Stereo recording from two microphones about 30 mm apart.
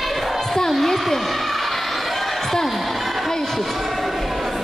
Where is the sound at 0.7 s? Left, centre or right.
Centre.